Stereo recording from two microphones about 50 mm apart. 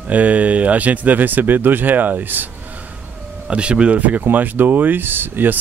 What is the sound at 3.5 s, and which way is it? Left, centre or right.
Speech, right.